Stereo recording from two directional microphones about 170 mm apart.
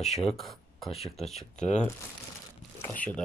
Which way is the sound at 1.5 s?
45° left (ahead or behind).